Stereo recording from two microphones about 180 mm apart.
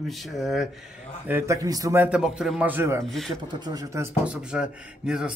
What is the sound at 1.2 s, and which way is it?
Speech, 15° right (ahead or behind).